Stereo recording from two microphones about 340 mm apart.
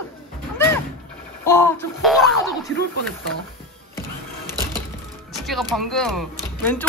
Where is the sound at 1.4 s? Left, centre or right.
Centre.